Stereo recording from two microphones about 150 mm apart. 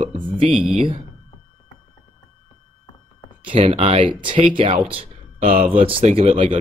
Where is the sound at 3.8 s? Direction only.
35° right (ahead or behind).